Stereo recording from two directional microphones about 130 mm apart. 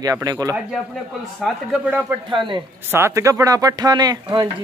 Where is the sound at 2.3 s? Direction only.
40° right (ahead or behind).